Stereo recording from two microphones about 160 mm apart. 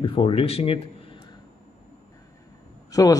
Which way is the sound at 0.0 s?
35° left (ahead or behind).